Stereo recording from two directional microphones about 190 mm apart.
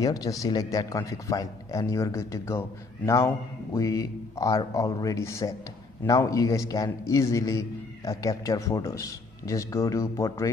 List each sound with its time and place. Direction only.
0.0 s a man's voice: 20° left (ahead or behind)